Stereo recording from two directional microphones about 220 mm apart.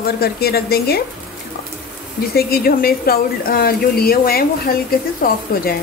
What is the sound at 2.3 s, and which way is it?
Speech, 45° left (ahead or behind).